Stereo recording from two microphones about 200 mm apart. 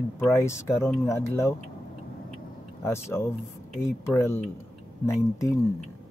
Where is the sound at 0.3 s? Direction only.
15° left (ahead or behind).